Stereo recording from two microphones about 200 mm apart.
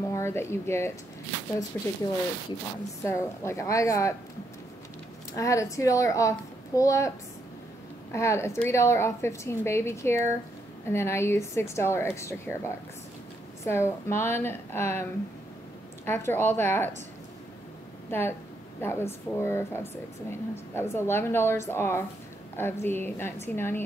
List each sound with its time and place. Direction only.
0.1 s a woman's voice: 15° left (ahead or behind)
3.0 s a woman's voice: 15° left (ahead or behind)
5.3 s a woman's voice: 15° left (ahead or behind)
8.1 s a woman's voice: 15° left (ahead or behind)
16.1 s a woman's voice: 10° left (ahead or behind)
18.8 s a woman's voice: 10° left (ahead or behind)